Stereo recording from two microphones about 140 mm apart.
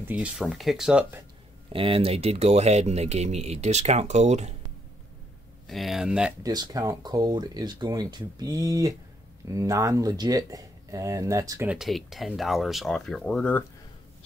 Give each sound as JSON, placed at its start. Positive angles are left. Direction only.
{"t": 0.0, "sound": "speech", "side_deg": -10}
{"t": 1.7, "sound": "speech", "side_deg": -40}
{"t": 5.7, "sound": "speech", "side_deg": 0}
{"t": 6.4, "sound": "speech", "side_deg": -30}
{"t": 11.6, "sound": "speech", "side_deg": -5}